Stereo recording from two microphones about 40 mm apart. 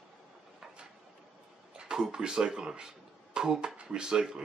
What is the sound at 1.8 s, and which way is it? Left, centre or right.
Speech, centre.